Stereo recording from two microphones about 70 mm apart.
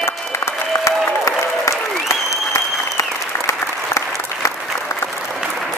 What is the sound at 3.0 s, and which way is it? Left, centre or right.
Applause, left.